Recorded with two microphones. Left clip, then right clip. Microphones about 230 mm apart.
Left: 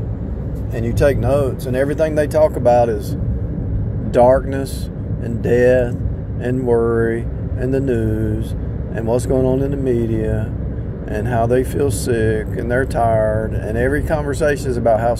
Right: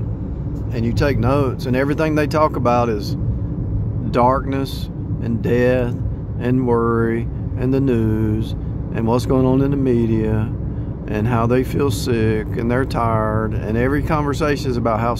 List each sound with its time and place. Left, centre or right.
0.7 s speech: centre
4.1 s speech: centre